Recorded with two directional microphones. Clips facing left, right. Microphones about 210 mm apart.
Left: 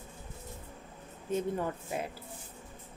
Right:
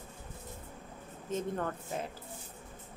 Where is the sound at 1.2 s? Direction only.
10° left (ahead or behind).